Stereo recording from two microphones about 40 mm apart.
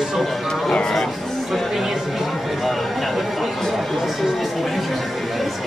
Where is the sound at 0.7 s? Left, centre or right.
Left.